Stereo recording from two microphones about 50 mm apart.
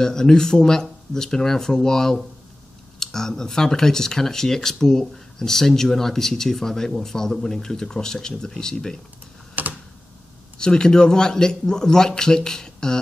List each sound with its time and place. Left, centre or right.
0.0 s speech: centre
9.6 s computer keyboard: right
10.6 s speech: centre